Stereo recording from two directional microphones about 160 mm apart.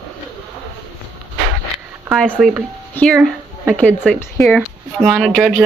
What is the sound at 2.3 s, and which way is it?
Speech, 10° right (ahead or behind).